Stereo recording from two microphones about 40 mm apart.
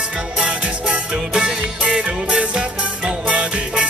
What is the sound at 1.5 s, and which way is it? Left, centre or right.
Music, right.